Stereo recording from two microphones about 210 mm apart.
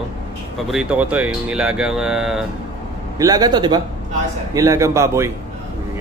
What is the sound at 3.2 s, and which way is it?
A man's voice, 15° right (ahead or behind).